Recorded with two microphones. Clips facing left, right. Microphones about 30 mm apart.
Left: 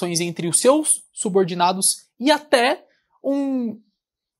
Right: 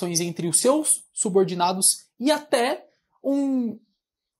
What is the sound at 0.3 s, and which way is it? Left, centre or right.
Speech, left.